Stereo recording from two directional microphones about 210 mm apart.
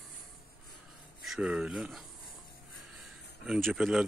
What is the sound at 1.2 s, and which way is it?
Speech, 5° right (ahead or behind).